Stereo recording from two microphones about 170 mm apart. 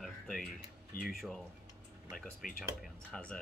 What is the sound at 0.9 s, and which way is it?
Speech, 60° left (ahead or behind).